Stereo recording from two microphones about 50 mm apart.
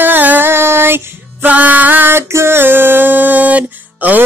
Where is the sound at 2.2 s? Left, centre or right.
Right.